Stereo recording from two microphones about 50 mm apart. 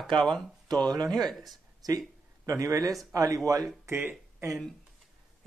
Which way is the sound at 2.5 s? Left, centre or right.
Right.